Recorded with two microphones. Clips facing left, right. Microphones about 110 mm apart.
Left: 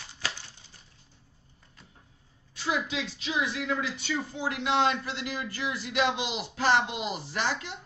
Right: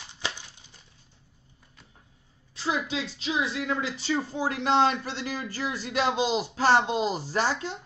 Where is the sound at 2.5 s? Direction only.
30° right (ahead or behind).